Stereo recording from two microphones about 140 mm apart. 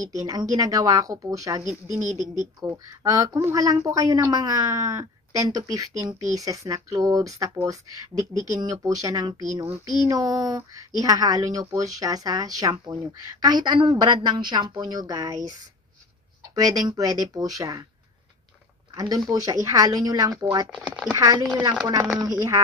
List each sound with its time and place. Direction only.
0.0 s speech: 25° right (ahead or behind)
1.7 s speech: 60° right (ahead or behind)
2.0 s speech: 30° left (ahead or behind)
2.7 s speech: 25° right (ahead or behind)
16.5 s speech: 25° right (ahead or behind)
18.9 s speech: 30° right (ahead or behind)